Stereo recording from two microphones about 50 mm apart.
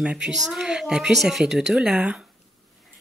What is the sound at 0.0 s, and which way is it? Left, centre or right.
A woman's voice, centre.